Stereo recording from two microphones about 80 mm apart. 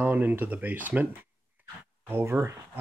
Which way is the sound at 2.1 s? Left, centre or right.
Right.